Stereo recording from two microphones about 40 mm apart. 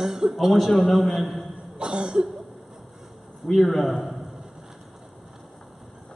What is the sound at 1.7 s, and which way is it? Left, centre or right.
Cough, right.